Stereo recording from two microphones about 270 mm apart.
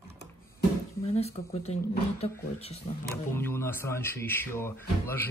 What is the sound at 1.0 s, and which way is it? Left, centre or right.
Speech, left.